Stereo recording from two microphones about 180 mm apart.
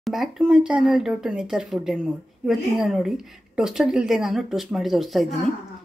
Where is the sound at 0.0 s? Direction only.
Centre (ahead or behind).